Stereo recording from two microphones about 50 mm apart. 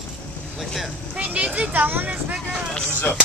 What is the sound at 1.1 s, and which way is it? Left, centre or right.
Speech, right.